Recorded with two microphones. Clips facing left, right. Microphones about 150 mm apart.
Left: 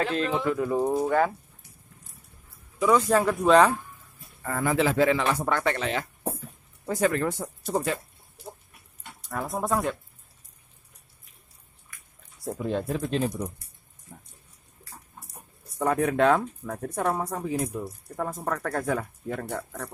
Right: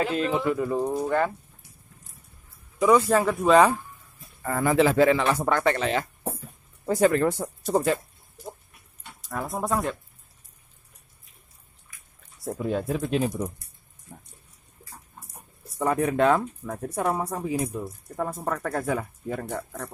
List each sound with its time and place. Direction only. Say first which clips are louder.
0.0 s speech: right 1 dB; 5° right (ahead or behind)
3.1 s speech: even; centre (ahead or behind)
4.5 s speech: right 3 dB; 35° right (ahead or behind)
9.3 s speech: even; centre (ahead or behind)
12.6 s speech: right 1 dB; 5° right (ahead or behind)
14.1 s a sound: right 2 dB; 15° right (ahead or behind)
15.8 s speech: even; centre (ahead or behind)